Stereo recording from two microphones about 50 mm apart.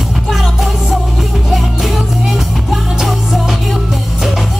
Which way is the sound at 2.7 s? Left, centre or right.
Centre.